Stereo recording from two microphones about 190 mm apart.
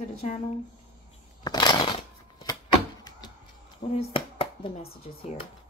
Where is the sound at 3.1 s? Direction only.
20° left (ahead or behind).